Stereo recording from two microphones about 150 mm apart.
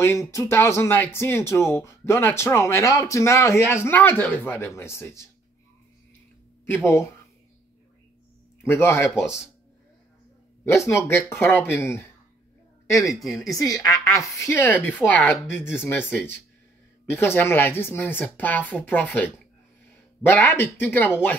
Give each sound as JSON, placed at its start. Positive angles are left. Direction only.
{"t": 0.0, "sound": "speech", "side_deg": 20}
{"t": 6.6, "sound": "speech", "side_deg": 15}
{"t": 8.6, "sound": "speech", "side_deg": 15}
{"t": 10.6, "sound": "speech", "side_deg": 15}
{"t": 13.1, "sound": "a woman's voice", "side_deg": 0}
{"t": 13.4, "sound": "speech", "side_deg": 25}